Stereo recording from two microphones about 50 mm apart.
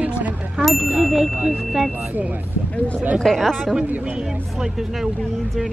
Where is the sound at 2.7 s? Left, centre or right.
Left.